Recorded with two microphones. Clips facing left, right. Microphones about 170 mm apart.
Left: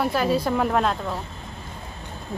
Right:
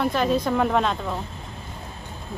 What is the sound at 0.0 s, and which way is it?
Speech, 5° left (ahead or behind).